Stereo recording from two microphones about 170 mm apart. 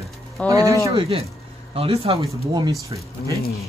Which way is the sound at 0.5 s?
20° right (ahead or behind).